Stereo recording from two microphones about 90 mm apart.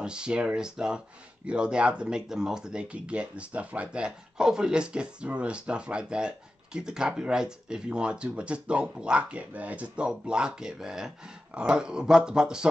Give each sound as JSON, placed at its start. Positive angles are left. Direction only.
{"t": 0.0, "sound": "speech", "side_deg": -10}